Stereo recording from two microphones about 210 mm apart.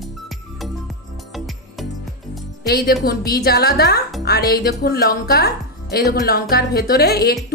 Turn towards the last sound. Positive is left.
turn(degrees=50)  # may be behind; listen again after turning